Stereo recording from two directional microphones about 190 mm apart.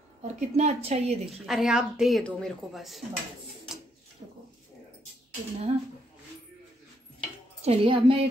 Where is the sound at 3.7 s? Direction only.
5° right (ahead or behind).